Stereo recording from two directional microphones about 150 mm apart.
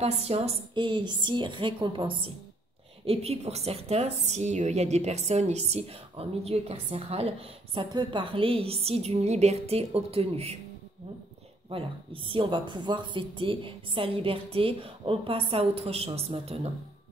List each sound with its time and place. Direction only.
0.0 s a woman's voice: 40° right (ahead or behind)
7.9 s speech: 30° right (ahead or behind)
11.7 s speech: 35° right (ahead or behind)